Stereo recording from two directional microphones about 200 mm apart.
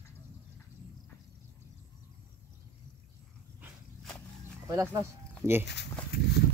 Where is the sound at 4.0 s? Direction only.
5° left (ahead or behind).